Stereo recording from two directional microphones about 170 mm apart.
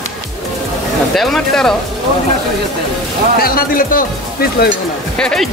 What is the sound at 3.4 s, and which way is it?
Speech, 60° left (ahead or behind).